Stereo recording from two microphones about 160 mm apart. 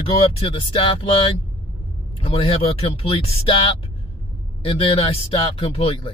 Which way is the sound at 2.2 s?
40° left (ahead or behind).